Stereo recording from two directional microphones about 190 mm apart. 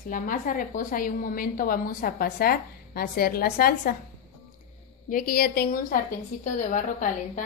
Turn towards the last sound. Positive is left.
turn(degrees=45)  # may be behind; listen again after turning